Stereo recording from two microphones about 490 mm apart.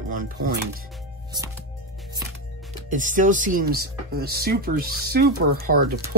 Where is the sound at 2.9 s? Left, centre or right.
Centre.